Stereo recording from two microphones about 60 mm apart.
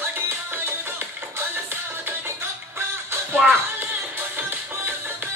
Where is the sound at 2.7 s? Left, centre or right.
Right.